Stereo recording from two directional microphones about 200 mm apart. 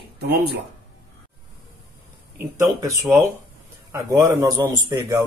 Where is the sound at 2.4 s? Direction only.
15° right (ahead or behind).